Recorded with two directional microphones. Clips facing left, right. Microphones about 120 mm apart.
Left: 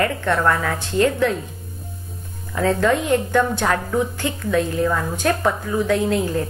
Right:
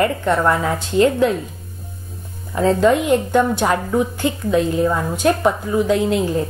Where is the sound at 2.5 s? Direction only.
25° right (ahead or behind).